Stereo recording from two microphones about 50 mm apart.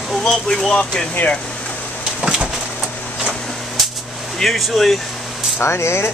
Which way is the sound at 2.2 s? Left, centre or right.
Centre.